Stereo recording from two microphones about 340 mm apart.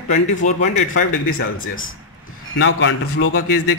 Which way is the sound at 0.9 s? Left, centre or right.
Left.